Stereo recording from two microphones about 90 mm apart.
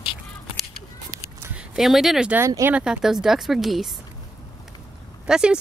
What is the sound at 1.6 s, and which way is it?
Speech, 5° right (ahead or behind).